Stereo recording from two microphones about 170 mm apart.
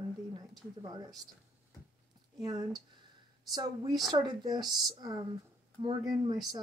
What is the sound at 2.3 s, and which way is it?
Speech, 25° right (ahead or behind).